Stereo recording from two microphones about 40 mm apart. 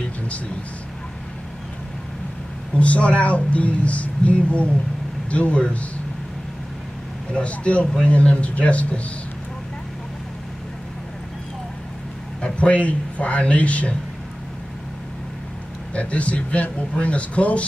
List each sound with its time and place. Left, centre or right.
2.8 s speech: left
7.4 s speech: left
12.4 s a man's voice: left
15.9 s speech: left